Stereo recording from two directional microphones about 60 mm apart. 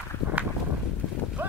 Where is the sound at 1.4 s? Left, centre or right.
Right.